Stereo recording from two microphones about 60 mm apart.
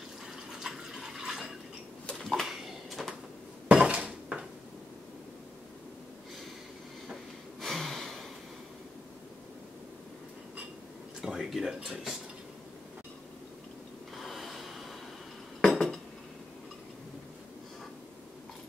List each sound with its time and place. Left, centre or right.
0.5 s water: centre
2.2 s a sound: centre
3.6 s dishes: centre
7.6 s a sound: centre
11.1 s speech: centre
14.1 s snort: centre
15.6 s cutlery: centre